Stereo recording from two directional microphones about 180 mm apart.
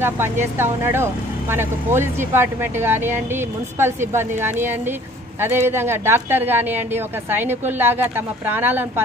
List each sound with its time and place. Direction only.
0.0 s speech: 10° right (ahead or behind)